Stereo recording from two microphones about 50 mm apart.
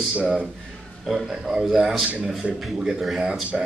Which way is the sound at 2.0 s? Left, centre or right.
Right.